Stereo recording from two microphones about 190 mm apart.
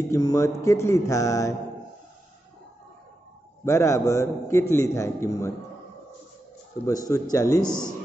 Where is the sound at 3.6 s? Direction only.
15° left (ahead or behind).